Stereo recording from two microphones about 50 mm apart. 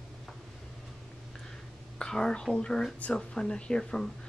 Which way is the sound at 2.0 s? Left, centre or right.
Centre.